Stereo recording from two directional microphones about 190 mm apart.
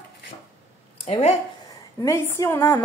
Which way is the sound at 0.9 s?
30° left (ahead or behind).